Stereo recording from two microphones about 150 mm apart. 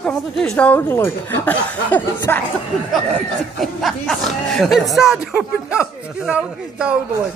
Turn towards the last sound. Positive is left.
turn(degrees=-5)  # may be behind; listen again after turning